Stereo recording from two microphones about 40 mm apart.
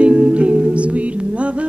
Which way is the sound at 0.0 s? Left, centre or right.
Right.